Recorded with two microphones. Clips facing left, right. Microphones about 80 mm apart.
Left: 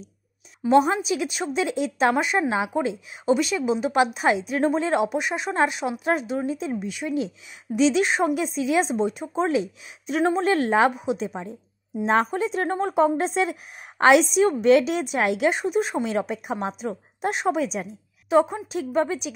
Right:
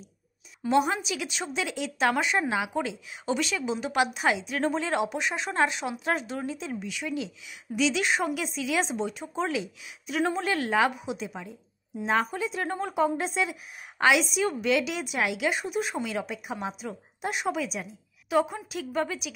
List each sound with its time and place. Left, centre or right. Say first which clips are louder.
0.7 s a woman's voice: left 6 dB; left